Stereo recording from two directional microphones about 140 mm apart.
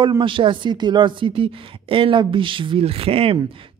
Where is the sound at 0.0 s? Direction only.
35° right (ahead or behind).